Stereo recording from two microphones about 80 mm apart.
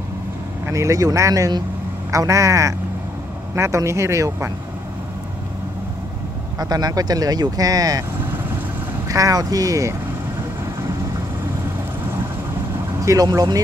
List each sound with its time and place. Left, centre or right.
0.7 s speech: right
6.6 s speech: right
9.1 s speech: right
13.0 s speech: right